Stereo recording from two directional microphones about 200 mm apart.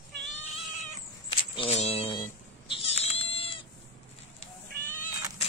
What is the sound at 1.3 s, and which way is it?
Cat, 30° left (ahead or behind).